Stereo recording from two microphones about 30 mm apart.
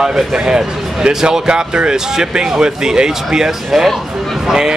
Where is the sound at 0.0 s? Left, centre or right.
Centre.